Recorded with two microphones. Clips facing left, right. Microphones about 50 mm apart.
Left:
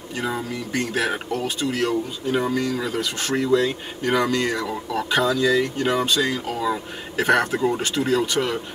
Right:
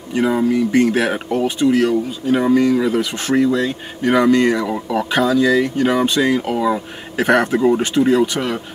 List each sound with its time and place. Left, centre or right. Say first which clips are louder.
0.1 s speech: right 11 dB; right